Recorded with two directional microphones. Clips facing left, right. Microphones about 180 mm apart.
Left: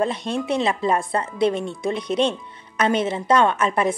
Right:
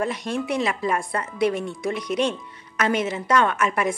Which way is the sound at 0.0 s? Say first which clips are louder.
Left 2 dB; 25° left (ahead or behind).